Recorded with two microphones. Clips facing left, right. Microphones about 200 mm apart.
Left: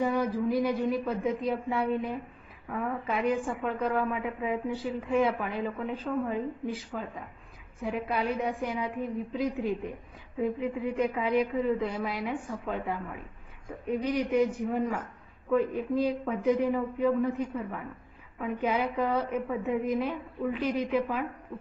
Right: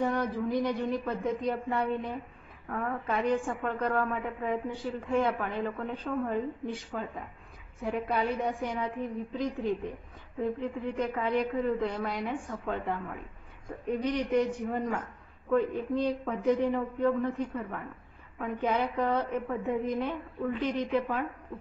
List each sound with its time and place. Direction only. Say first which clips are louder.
0.0 s a woman's voice: left 2 dB; 5° left (ahead or behind)